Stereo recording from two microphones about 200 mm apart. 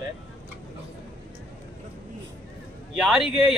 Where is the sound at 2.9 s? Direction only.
Centre (ahead or behind).